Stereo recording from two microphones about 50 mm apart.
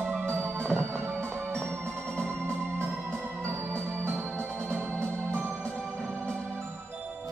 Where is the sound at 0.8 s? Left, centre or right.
Right.